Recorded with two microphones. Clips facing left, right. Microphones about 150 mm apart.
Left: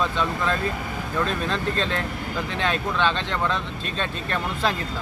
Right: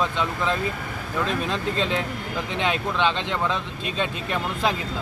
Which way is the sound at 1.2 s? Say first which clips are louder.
Right 1 dB; 15° right (ahead or behind).